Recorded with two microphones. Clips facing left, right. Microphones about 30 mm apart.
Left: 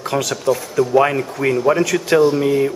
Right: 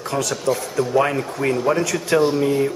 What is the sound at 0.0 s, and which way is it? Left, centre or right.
Speech, centre.